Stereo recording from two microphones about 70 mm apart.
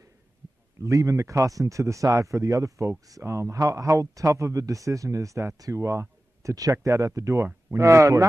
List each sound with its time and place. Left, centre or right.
0.8 s a man's voice: right